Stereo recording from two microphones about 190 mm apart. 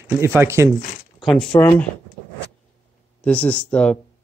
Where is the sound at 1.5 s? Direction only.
15° left (ahead or behind).